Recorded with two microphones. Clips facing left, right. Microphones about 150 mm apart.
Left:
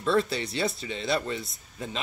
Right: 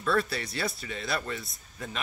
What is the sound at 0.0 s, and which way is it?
Speech, 25° left (ahead or behind).